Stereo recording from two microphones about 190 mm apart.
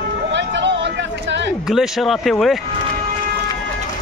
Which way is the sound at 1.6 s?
Centre (ahead or behind).